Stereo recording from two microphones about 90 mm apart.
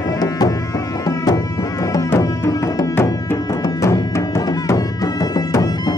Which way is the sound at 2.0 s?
30° left (ahead or behind).